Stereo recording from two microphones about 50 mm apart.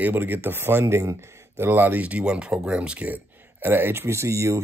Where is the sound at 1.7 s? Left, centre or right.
Right.